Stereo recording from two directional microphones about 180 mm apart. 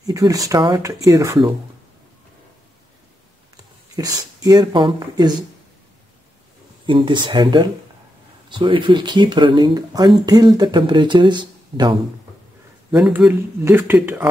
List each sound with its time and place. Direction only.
0.0 s speech: 20° right (ahead or behind)
3.9 s speech: 20° right (ahead or behind)
6.9 s speech: 25° right (ahead or behind)
12.9 s speech: 5° right (ahead or behind)